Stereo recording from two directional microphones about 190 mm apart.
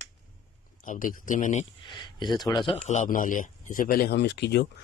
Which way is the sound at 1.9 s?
25° left (ahead or behind).